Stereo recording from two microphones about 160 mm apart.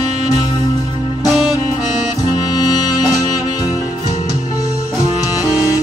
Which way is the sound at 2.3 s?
25° left (ahead or behind).